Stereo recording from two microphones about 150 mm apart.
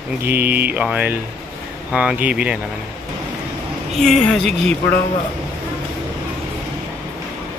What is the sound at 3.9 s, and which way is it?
Speech, centre (ahead or behind).